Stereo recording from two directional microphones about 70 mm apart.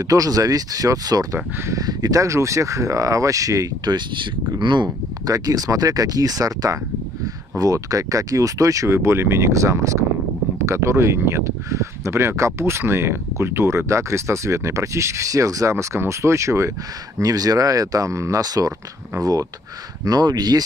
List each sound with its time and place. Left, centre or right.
0.0 s speech: right
1.3 s speech: right
1.9 s speech: right
3.8 s speech: right
5.2 s speech: right
17.2 s speech: right
20.1 s speech: right